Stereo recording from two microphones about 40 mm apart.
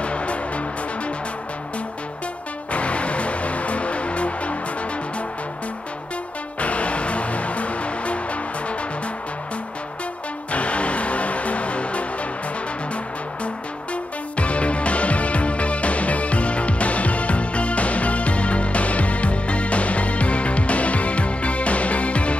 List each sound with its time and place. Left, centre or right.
0.0 s music: left
2.7 s music: left
6.6 s music: left
10.5 s music: left
14.3 s music: left